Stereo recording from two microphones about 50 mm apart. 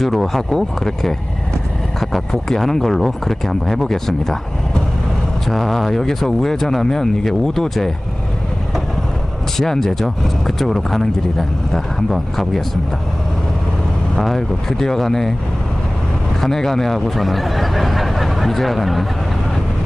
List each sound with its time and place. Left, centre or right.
0.0 s speech: centre
5.5 s speech: centre
9.6 s speech: centre
14.1 s speech: centre
16.3 s speech: centre